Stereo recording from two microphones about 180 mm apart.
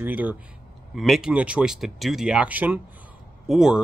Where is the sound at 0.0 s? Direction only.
10° right (ahead or behind).